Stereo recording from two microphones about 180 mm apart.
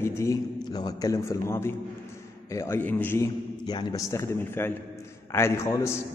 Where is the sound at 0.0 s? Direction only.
15° left (ahead or behind).